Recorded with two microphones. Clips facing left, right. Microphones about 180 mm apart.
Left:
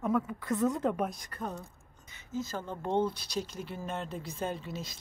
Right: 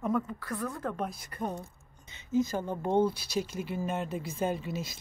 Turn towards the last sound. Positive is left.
turn(degrees=-5)  # may be behind; listen again after turning